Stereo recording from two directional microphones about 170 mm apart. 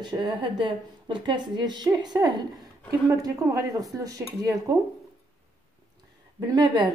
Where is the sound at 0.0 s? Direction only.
25° right (ahead or behind).